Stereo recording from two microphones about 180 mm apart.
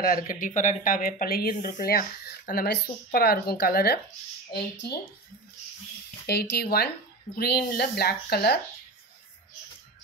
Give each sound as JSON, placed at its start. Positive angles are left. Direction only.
{"t": 0.0, "sound": "speech", "side_deg": 50}
{"t": 6.2, "sound": "speech", "side_deg": 60}